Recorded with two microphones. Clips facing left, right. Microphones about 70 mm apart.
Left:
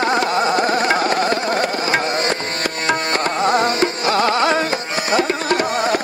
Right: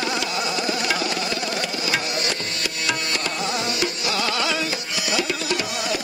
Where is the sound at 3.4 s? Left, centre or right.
Left.